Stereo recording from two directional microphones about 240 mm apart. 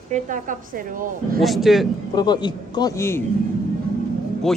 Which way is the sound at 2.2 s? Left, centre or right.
Centre.